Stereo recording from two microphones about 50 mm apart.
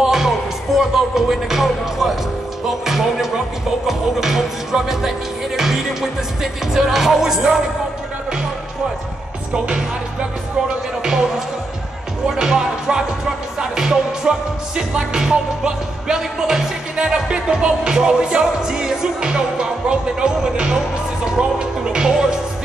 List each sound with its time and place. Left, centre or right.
0.0 s music: centre
2.8 s speech: centre
5.6 s music: centre
11.0 s music: centre